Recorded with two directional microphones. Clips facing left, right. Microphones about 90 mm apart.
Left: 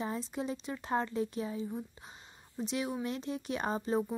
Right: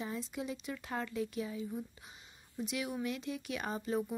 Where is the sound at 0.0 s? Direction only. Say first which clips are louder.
Left 4 dB; 35° left (ahead or behind).